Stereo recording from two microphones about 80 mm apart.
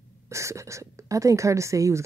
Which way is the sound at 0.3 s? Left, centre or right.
Right.